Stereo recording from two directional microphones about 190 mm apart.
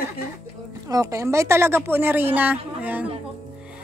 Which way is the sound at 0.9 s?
15° right (ahead or behind).